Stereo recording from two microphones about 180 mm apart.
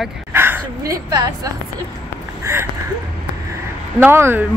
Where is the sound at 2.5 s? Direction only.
15° right (ahead or behind).